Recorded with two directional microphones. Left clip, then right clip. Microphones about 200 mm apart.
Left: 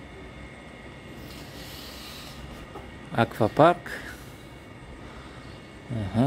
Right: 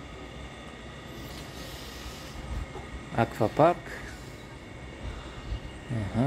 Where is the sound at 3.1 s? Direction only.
20° left (ahead or behind).